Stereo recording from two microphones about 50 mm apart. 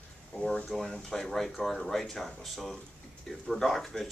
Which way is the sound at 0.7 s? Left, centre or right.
Centre.